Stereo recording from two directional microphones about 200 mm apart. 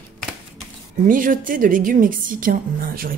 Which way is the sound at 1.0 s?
40° right (ahead or behind).